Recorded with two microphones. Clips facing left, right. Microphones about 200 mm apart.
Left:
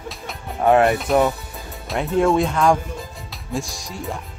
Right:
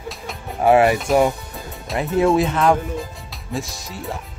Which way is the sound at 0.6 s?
5° right (ahead or behind).